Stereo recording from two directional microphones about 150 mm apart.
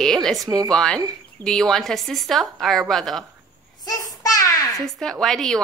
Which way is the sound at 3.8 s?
25° left (ahead or behind).